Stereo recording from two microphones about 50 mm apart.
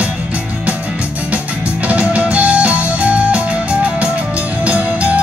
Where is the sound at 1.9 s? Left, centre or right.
Right.